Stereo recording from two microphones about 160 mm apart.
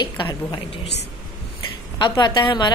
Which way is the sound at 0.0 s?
30° left (ahead or behind).